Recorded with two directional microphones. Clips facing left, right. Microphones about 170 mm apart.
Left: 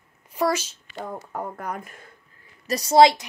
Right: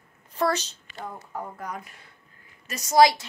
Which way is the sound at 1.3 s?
60° left (ahead or behind).